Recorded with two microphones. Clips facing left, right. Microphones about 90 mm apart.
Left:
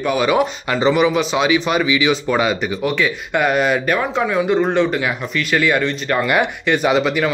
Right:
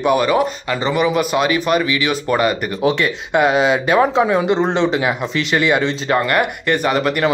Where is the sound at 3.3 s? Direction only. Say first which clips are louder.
Right 3 dB; 15° right (ahead or behind).